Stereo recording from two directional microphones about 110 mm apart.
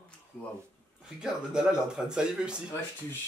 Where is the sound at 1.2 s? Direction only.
5° right (ahead or behind).